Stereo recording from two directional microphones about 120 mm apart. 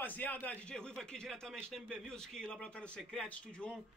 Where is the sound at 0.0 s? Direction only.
15° left (ahead or behind).